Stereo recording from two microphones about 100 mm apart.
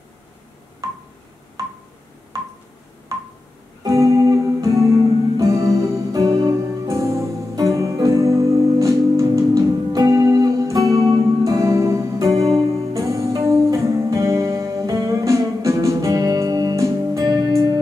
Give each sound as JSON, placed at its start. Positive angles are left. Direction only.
{"t": 3.8, "sound": "music", "side_deg": -30}